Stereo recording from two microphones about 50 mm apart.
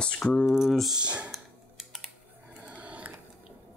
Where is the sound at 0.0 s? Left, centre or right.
Centre.